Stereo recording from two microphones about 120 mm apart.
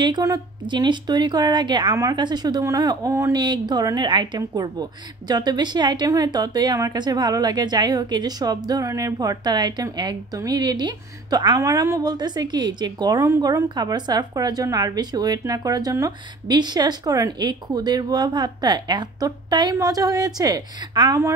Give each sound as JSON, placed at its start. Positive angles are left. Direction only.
{"t": 0.0, "sound": "a woman's voice", "side_deg": -35}